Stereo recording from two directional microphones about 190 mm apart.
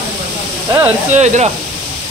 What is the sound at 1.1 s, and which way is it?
Speech, 40° right (ahead or behind).